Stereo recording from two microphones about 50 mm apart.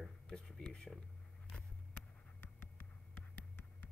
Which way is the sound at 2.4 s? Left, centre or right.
Left.